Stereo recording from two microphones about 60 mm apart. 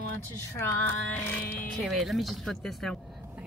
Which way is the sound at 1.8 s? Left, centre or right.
Centre.